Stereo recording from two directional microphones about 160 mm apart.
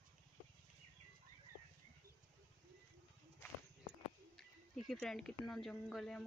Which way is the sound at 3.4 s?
15° left (ahead or behind).